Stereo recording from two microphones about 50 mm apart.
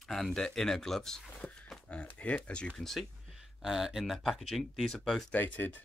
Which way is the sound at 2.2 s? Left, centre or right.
Left.